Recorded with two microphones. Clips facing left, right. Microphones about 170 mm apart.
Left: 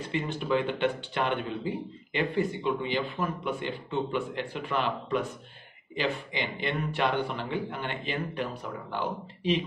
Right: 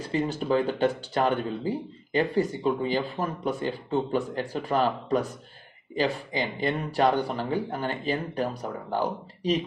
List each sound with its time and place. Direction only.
0.1 s speech: 35° right (ahead or behind)